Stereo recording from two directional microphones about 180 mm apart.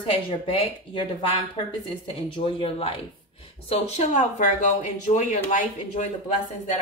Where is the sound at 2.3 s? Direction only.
30° left (ahead or behind).